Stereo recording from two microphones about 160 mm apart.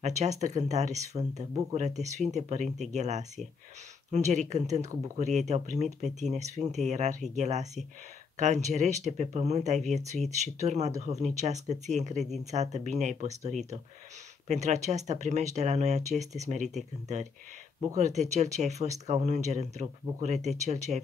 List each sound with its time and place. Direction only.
0.0 s speech: 45° right (ahead or behind)
14.5 s speech: 45° right (ahead or behind)